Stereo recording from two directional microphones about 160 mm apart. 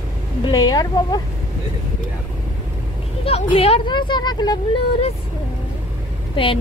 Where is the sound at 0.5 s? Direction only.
25° left (ahead or behind).